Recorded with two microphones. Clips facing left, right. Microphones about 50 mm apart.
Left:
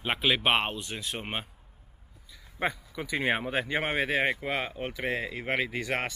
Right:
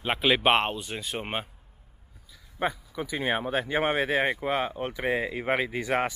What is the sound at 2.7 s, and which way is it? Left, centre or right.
Speech, centre.